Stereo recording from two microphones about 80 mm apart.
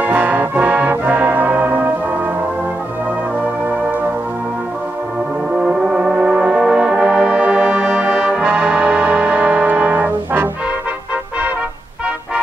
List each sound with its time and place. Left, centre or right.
0.0 s music: right
5.6 s brass instrument: centre